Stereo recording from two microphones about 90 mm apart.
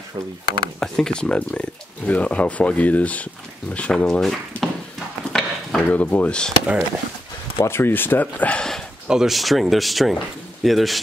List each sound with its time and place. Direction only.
0.7 s speech: 5° left (ahead or behind)
5.3 s a sound: 10° left (ahead or behind)
7.5 s speech: 30° left (ahead or behind); by 8.8 s 5° left (ahead or behind)
9.0 s speech: 5° right (ahead or behind)